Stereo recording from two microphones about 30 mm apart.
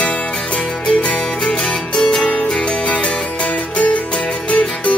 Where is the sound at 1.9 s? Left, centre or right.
Left.